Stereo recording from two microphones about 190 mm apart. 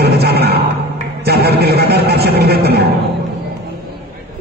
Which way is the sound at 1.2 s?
55° right (ahead or behind).